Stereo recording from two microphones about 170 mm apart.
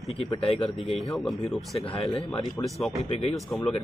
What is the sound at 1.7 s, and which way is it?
Speech, 30° left (ahead or behind).